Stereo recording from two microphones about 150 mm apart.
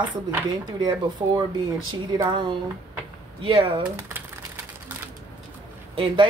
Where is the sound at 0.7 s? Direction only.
30° right (ahead or behind).